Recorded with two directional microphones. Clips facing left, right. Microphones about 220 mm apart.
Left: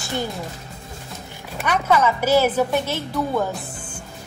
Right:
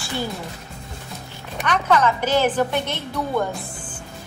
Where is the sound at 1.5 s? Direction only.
10° left (ahead or behind).